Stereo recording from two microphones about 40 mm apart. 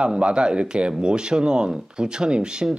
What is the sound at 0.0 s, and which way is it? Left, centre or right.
Speech, right.